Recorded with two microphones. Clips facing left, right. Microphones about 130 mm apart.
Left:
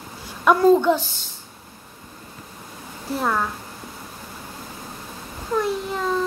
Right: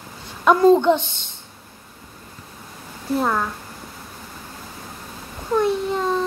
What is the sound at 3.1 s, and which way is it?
Speech, 5° right (ahead or behind).